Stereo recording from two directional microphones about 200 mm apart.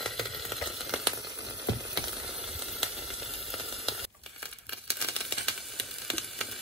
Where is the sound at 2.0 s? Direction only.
Centre (ahead or behind).